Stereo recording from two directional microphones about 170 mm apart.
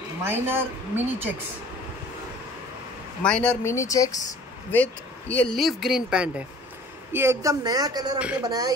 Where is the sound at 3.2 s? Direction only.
5° left (ahead or behind).